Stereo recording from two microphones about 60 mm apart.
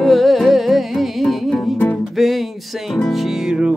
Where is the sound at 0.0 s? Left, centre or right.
Centre.